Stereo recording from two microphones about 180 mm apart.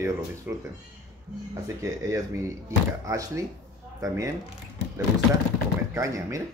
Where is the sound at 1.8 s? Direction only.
15° right (ahead or behind).